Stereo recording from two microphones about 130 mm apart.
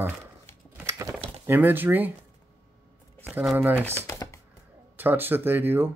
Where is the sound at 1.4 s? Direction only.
15° right (ahead or behind).